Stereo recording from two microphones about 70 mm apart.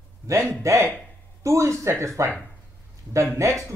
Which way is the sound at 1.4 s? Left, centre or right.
Right.